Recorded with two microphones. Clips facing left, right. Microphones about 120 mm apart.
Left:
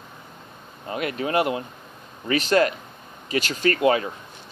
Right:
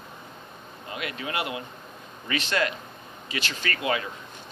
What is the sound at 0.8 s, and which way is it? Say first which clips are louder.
Speech: left 7 dB; 40° left (ahead or behind).